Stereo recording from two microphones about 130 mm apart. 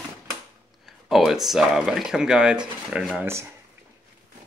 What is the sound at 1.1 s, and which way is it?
Speech, centre (ahead or behind).